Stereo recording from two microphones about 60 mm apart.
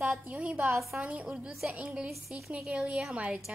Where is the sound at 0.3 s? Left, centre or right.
Right.